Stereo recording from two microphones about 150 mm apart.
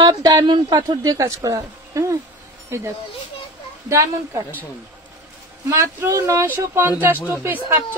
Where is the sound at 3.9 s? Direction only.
20° right (ahead or behind).